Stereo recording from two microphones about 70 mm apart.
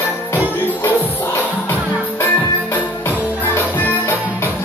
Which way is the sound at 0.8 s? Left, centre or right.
Left.